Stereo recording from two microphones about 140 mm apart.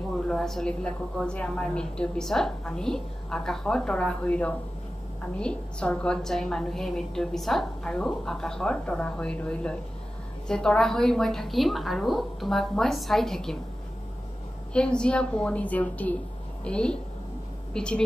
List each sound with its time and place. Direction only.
0.3 s a woman's voice: 5° left (ahead or behind)
14.7 s a woman's voice: 5° left (ahead or behind)